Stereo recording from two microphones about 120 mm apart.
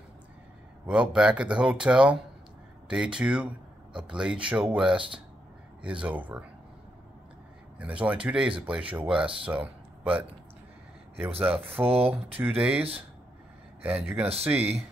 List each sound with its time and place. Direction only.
0.8 s speech: 10° right (ahead or behind)
7.8 s speech: 10° right (ahead or behind)
11.8 s speech: 10° right (ahead or behind)
13.8 s speech: 15° right (ahead or behind)